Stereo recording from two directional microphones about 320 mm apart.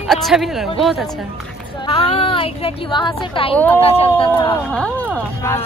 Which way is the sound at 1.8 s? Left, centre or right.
Centre.